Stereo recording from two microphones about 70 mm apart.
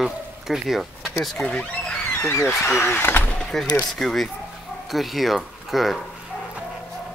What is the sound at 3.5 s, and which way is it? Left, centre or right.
Speech, centre.